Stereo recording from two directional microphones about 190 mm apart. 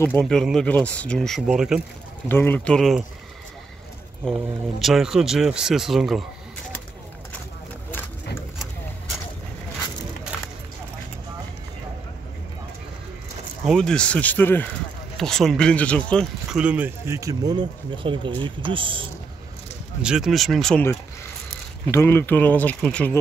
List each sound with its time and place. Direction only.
0.2 s speech: centre (ahead or behind)
2.2 s speech: 10° left (ahead or behind)
4.2 s speech: centre (ahead or behind)
13.7 s speech: 5° left (ahead or behind); by 19.0 s 25° right (ahead or behind)
20.0 s speech: 5° right (ahead or behind)